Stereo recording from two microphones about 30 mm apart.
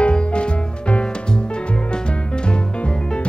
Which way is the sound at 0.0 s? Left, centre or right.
Left.